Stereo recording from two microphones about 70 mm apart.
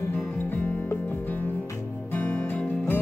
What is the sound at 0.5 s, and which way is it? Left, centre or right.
Music, left.